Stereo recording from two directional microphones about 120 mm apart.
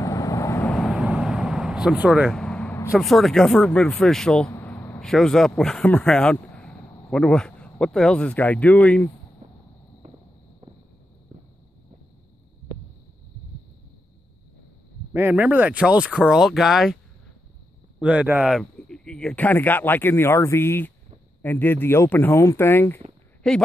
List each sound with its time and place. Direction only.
0.0 s vehicle: 25° left (ahead or behind)
0.8 s vehicle: 5° right (ahead or behind)
2.2 s vehicle: 5° left (ahead or behind)
3.0 s speech: centre (ahead or behind)
4.5 s a sound: 20° left (ahead or behind)
5.0 s speech: 5° left (ahead or behind)
9.4 s fireworks: 60° right (ahead or behind)
10.0 s a sound: 90° right
15.1 s speech: 15° right (ahead or behind)
18.0 s speech: 10° right (ahead or behind)
18.6 s speech: 5° left (ahead or behind)
23.4 s speech: 5° left (ahead or behind)